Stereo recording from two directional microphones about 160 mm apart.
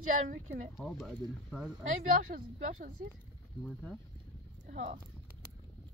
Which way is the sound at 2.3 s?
65° right (ahead or behind).